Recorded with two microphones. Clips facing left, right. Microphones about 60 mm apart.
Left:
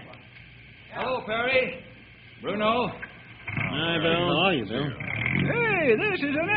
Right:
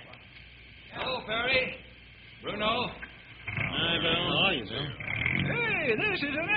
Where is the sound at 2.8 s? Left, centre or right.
Left.